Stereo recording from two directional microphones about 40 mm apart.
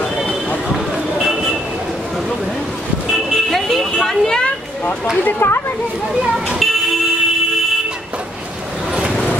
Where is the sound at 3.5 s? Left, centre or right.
Centre.